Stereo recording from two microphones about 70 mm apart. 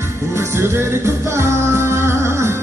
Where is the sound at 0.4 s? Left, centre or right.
Right.